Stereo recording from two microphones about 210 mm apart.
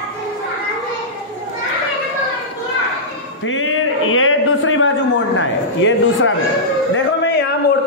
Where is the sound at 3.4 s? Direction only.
75° left (ahead or behind).